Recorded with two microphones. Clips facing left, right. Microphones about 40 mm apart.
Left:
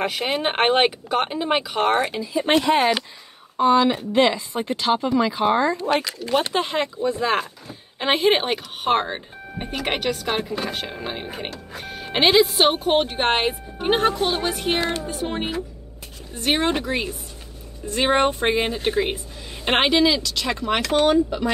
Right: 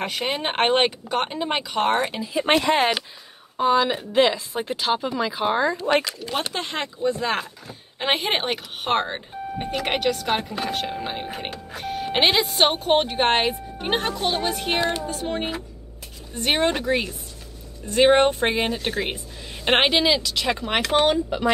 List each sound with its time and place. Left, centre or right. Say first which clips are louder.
0.0 s speech: left 3 dB; centre
3.5 s speech: left 3 dB; centre
20.8 s speech: left 2 dB; right